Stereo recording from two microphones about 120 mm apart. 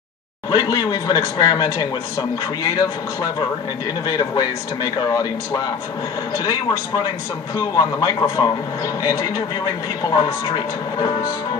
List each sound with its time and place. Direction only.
0.5 s speech: 35° left (ahead or behind)